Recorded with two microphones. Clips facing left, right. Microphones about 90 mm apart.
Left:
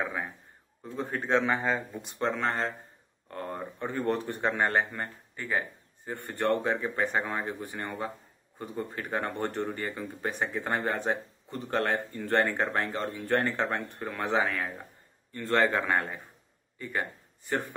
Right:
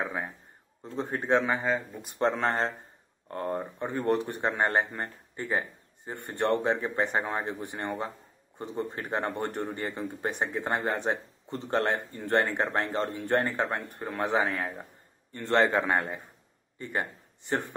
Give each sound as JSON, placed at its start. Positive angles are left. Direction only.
{"t": 0.9, "sound": "speech", "side_deg": -20}
{"t": 1.4, "sound": "speech", "side_deg": -5}
{"t": 2.1, "sound": "speech", "side_deg": -35}
{"t": 9.4, "sound": "speech", "side_deg": -15}
{"t": 9.8, "sound": "a man's voice", "side_deg": -30}